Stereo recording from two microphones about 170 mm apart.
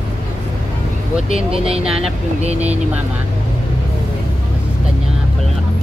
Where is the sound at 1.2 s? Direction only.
35° right (ahead or behind).